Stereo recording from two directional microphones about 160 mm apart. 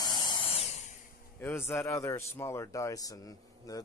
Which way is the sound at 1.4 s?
15° left (ahead or behind).